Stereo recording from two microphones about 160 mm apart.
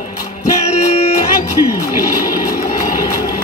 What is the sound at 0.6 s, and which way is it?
Music, 40° left (ahead or behind).